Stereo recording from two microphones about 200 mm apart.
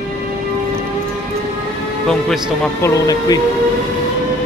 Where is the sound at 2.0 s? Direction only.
Centre (ahead or behind).